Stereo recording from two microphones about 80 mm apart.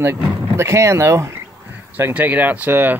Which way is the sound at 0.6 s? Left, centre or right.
Right.